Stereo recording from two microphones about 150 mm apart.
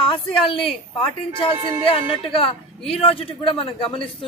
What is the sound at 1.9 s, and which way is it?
A woman's voice, 35° left (ahead or behind).